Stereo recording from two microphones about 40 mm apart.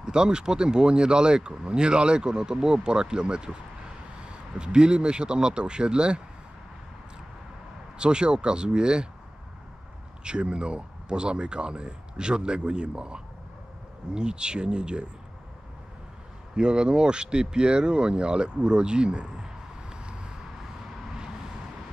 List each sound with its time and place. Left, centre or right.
0.0 s speech: centre
4.6 s speech: right
8.0 s speech: right
10.2 s speech: right
16.5 s speech: right
19.9 s vehicle: right